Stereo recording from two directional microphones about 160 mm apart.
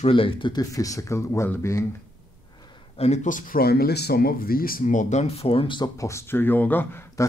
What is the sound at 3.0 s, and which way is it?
Speech, 45° left (ahead or behind).